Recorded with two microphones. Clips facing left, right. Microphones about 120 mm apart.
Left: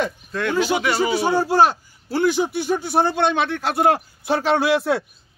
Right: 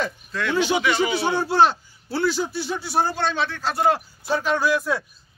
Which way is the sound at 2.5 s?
50° left (ahead or behind).